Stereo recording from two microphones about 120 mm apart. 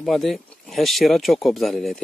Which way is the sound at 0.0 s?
Centre (ahead or behind).